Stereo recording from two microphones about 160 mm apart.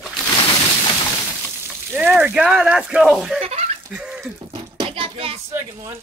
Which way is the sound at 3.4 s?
40° right (ahead or behind).